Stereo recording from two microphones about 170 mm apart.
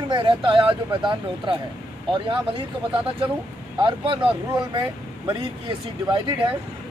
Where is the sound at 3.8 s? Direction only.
30° right (ahead or behind).